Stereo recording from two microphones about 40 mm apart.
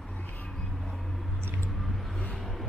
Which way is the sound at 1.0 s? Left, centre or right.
Centre.